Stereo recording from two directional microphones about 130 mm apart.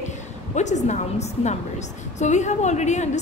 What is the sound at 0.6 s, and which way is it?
Speech, 65° left (ahead or behind).